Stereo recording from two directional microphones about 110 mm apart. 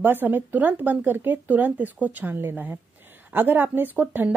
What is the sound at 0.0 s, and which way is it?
Speech, 20° right (ahead or behind).